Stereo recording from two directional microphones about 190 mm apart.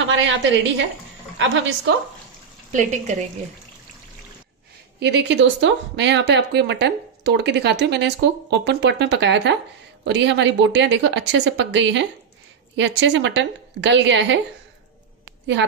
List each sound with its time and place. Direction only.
0.0 s a woman's voice: 85° right
2.7 s a woman's voice: 40° right (ahead or behind)
5.0 s a woman's voice: 70° right (ahead or behind)